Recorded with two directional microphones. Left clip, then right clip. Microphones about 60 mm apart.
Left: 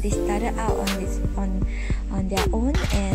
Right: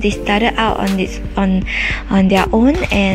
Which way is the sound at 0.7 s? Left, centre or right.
Centre.